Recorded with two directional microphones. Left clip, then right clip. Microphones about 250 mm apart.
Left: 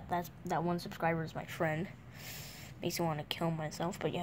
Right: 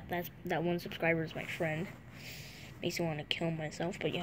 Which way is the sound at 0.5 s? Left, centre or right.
Left.